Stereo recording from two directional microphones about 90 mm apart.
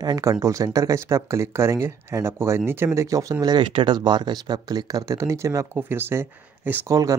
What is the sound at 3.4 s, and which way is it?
Speech, 55° right (ahead or behind).